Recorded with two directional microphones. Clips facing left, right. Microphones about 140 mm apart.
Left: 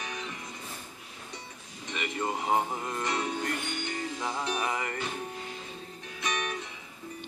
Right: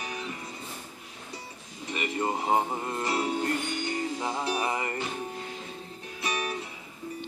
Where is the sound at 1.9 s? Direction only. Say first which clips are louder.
Right 3 dB; 30° right (ahead or behind).